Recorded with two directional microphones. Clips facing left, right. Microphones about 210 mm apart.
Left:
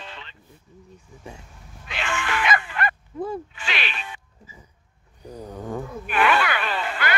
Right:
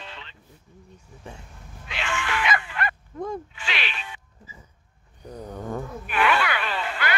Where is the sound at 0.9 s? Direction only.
10° left (ahead or behind).